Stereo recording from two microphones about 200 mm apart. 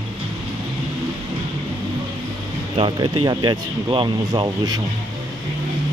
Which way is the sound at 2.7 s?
25° right (ahead or behind).